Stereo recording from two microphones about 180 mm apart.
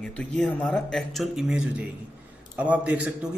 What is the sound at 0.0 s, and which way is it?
A man's voice, 5° left (ahead or behind).